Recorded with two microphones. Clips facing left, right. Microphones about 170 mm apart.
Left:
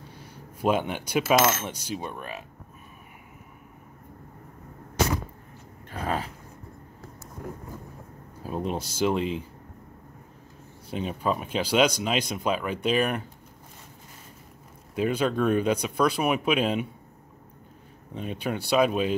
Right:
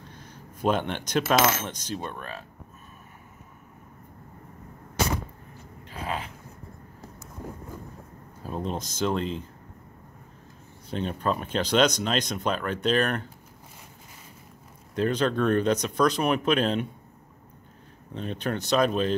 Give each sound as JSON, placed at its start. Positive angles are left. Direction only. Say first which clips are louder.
{"t": 0.1, "sound": "coin", "louder": "left 1 dB", "side_deg": 10}
{"t": 5.9, "sound": "a sound", "louder": "left 3 dB", "side_deg": 40}
{"t": 8.4, "sound": "speech", "louder": "left 2 dB", "side_deg": 10}
{"t": 10.9, "sound": "speech", "louder": "even", "side_deg": 10}
{"t": 15.0, "sound": "speech", "louder": "even", "side_deg": 10}
{"t": 18.1, "sound": "speech", "louder": "even", "side_deg": 10}